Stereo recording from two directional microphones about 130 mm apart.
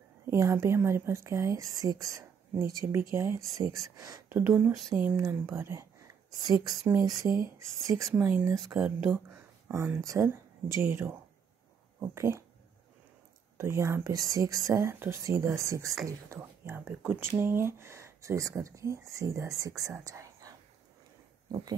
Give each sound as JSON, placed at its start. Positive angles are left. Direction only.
{"t": 0.3, "sound": "speech", "side_deg": -20}
{"t": 4.4, "sound": "speech", "side_deg": -15}
{"t": 7.1, "sound": "speech", "side_deg": -25}
{"t": 8.1, "sound": "speech", "side_deg": -10}
{"t": 8.7, "sound": "speech", "side_deg": -5}
{"t": 9.3, "sound": "speech", "side_deg": -20}
{"t": 13.6, "sound": "speech", "side_deg": -20}